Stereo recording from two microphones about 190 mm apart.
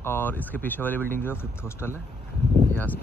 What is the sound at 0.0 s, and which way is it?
Speech, 10° left (ahead or behind).